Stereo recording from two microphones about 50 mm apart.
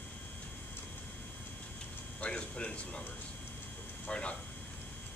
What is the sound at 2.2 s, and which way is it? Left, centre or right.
Speech, left.